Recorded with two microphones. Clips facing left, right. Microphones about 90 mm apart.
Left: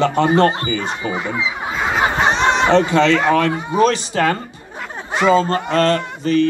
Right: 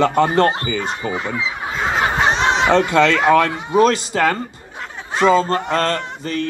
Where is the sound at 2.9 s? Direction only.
50° right (ahead or behind).